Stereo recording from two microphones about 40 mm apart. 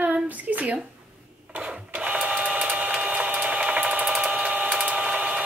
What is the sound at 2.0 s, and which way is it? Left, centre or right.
Printer, right.